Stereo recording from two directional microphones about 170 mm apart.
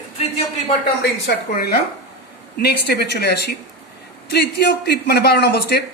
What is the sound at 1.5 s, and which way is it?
A man's voice, 65° left (ahead or behind).